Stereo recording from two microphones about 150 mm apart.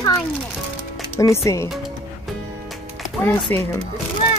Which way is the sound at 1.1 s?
20° left (ahead or behind).